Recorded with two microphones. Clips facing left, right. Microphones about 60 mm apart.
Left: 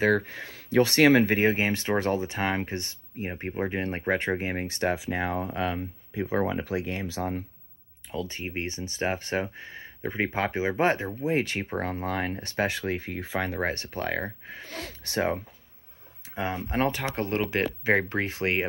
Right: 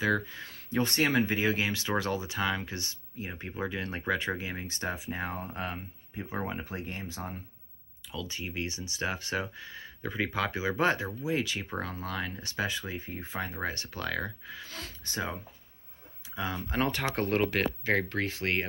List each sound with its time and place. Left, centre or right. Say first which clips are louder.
0.0 s speech: left 5 dB; left
1.5 s speech: left 4 dB; left
4.9 s speech: left 7 dB; left
6.3 s speech: left 8 dB; left
8.1 s speech: left 5 dB; left
11.1 s speech: left 5 dB; left
14.7 s speech: left 6 dB; left
16.3 s speech: left 4 dB; left
16.9 s speech: even; centre